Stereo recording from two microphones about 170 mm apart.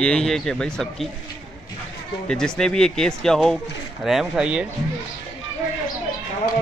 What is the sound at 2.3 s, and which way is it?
A man's voice, 5° left (ahead or behind).